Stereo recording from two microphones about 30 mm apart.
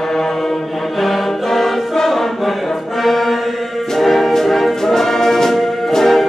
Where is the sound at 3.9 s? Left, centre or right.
Centre.